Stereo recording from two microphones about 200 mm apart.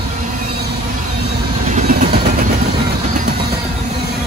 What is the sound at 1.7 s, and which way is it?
Vehicle, 45° right (ahead or behind).